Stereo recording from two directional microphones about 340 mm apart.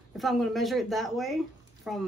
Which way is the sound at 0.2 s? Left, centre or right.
Centre.